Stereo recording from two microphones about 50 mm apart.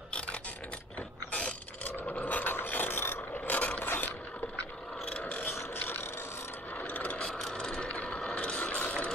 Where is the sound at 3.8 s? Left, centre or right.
Left.